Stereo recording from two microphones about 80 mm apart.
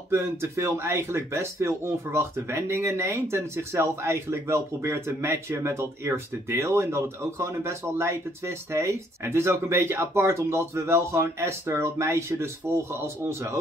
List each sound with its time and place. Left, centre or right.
0.1 s speech: right